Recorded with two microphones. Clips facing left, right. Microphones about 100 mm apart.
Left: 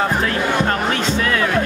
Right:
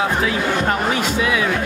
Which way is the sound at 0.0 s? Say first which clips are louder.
Even; 5° right (ahead or behind).